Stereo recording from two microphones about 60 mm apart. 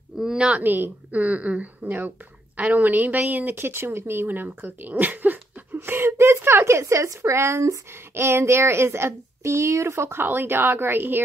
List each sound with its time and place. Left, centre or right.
0.2 s a sound: centre
0.6 s a woman's voice: right
8.1 s speech: right